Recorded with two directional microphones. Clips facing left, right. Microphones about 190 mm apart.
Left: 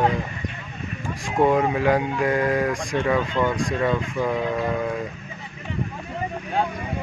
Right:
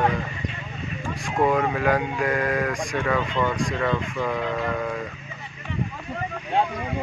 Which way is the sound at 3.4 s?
10° left (ahead or behind).